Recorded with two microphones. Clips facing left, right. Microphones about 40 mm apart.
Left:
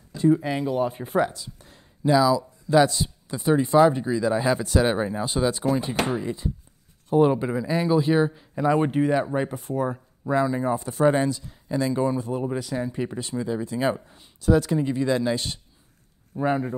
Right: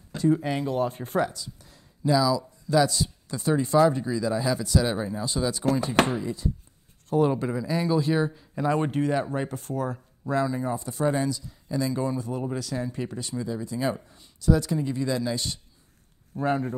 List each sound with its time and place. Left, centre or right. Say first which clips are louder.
0.3 s speech: left 2 dB; centre
1.3 s a sound: even; left
2.1 s speech: left 4 dB; left
10.8 s speech: left 6 dB; left
16.3 s speech: left 2 dB; centre